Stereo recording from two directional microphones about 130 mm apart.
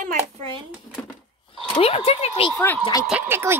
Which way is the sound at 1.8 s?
50° left (ahead or behind).